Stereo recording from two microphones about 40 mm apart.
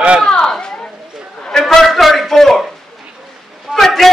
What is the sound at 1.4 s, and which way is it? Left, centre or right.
Music, centre.